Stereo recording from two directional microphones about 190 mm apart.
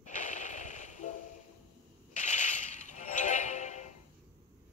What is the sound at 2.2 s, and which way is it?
Music, 40° left (ahead or behind).